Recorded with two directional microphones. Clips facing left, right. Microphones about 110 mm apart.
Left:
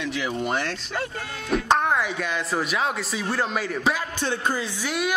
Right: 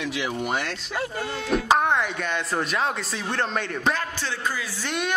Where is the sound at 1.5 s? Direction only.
Centre (ahead or behind).